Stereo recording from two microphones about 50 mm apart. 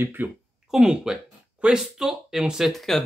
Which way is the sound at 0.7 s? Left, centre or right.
Centre.